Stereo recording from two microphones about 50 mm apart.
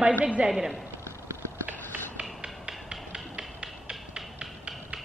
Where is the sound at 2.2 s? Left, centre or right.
Centre.